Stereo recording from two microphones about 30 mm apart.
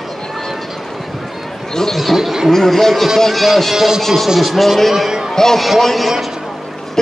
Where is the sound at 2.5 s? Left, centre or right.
Centre.